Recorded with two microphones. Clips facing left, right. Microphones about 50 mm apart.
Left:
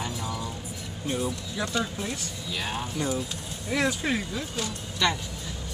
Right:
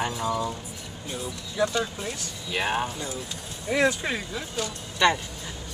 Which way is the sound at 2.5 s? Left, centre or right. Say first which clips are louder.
Right 6 dB; right.